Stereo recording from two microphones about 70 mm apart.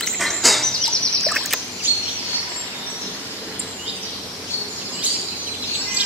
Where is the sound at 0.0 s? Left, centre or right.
Centre.